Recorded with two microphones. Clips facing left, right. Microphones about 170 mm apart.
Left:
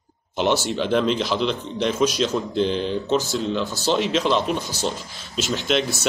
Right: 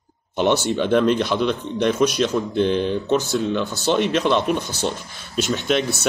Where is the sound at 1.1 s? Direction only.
55° right (ahead or behind).